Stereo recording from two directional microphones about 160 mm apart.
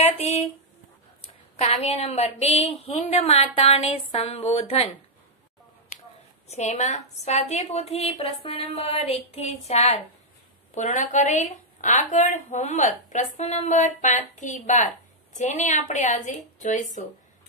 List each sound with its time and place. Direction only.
1.6 s a woman's voice: 40° left (ahead or behind)
6.5 s a woman's voice: 45° left (ahead or behind)